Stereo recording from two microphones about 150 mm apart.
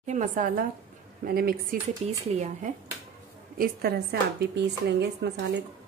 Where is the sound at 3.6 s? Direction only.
90° right.